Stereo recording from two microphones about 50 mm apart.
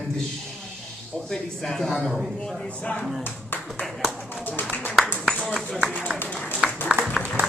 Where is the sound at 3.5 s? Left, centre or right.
Left.